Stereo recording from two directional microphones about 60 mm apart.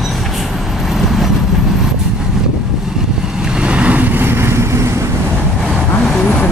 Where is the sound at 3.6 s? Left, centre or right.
Centre; by 4.8 s right.